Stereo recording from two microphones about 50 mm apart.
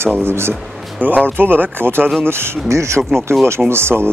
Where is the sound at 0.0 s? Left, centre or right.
Right.